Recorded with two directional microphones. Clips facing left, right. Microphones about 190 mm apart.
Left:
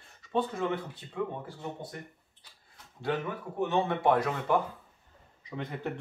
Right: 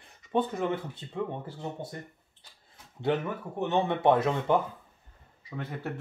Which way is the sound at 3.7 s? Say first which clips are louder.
Right 3 dB; 20° right (ahead or behind).